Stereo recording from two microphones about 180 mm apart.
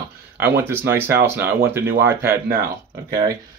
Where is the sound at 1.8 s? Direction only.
90° right.